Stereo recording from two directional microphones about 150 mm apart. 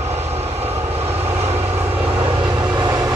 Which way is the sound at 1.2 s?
45° right (ahead or behind).